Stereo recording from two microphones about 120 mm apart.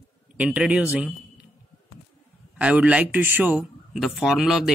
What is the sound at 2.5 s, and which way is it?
A man's voice, 10° right (ahead or behind).